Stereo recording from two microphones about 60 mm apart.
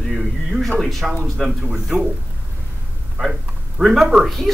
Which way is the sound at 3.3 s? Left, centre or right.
Centre.